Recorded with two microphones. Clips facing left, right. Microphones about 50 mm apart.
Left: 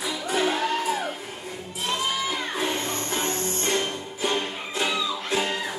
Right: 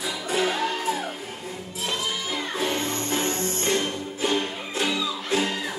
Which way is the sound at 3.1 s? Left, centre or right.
Right.